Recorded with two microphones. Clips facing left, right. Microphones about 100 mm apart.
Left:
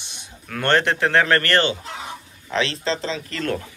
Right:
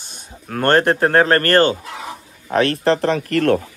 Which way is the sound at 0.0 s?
40° right (ahead or behind).